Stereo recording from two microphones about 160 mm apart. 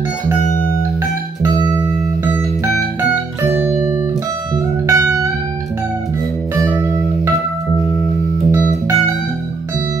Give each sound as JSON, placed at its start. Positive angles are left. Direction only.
{"t": 4.8, "sound": "music", "side_deg": -20}
{"t": 8.5, "sound": "music", "side_deg": -15}